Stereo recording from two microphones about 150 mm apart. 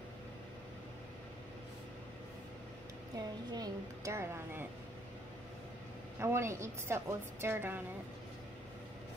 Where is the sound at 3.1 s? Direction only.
25° right (ahead or behind).